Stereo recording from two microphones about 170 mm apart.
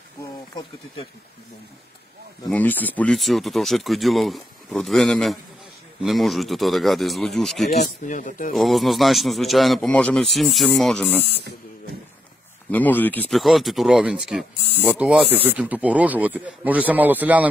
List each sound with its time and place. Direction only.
2.5 s a man's voice: 10° left (ahead or behind)
7.7 s speech: 50° left (ahead or behind)
8.5 s a man's voice: centre (ahead or behind)
12.7 s speech: 10° left (ahead or behind)
13.4 s speech: centre (ahead or behind)